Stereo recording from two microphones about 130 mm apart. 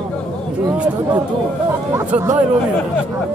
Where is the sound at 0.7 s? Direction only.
10° right (ahead or behind).